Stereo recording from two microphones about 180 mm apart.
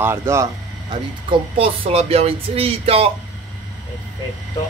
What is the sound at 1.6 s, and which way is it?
Speech, 30° right (ahead or behind).